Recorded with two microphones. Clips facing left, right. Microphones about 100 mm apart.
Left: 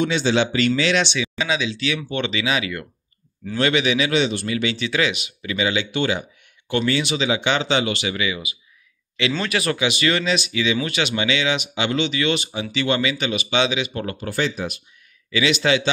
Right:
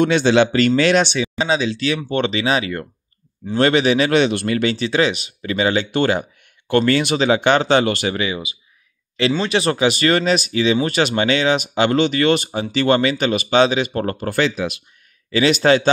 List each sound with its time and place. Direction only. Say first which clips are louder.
0.0 s speech: right 5 dB; 60° right (ahead or behind); by 4.1 s 40° right (ahead or behind)
4.1 s speech: right 5 dB; 60° right (ahead or behind); by 14.3 s 45° right (ahead or behind)
14.3 s speech: right 4 dB; 90° right
15.3 s speech: right 5 dB; 40° right (ahead or behind)